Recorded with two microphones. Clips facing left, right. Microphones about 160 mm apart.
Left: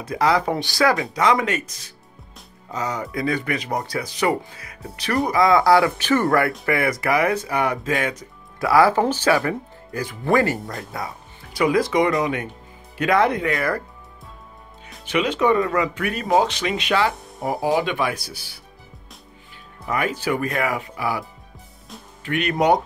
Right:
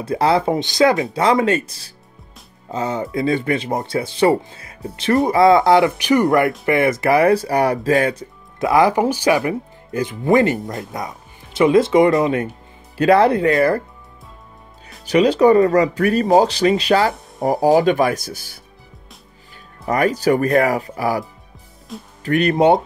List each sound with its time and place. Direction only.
0.0 s speech: 30° right (ahead or behind)
15.0 s speech: 35° right (ahead or behind)
19.9 s speech: 40° right (ahead or behind)